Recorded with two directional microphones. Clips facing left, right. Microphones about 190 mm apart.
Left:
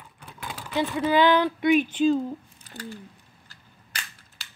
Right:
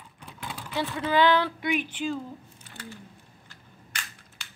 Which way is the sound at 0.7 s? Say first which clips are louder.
Left 3 dB; 15° left (ahead or behind).